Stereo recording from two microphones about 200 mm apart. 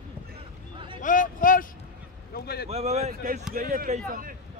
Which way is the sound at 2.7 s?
30° right (ahead or behind).